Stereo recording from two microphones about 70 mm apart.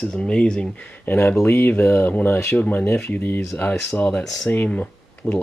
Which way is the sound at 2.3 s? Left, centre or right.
Left.